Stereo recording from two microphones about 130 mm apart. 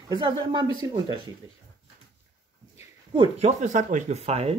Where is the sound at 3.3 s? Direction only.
65° right (ahead or behind).